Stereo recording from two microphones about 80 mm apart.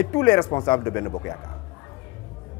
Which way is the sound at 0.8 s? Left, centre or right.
Left.